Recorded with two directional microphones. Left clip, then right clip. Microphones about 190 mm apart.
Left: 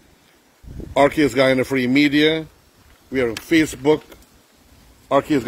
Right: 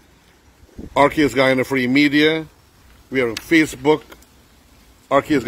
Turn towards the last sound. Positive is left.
turn(degrees=5)  # may be behind; listen again after turning